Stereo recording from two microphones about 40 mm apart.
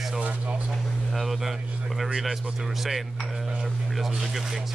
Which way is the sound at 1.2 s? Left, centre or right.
Centre.